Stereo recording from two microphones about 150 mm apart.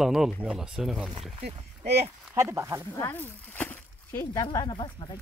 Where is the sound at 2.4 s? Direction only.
20° right (ahead or behind).